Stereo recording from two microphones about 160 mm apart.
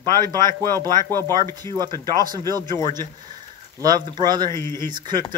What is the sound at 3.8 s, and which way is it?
Speech, 25° right (ahead or behind).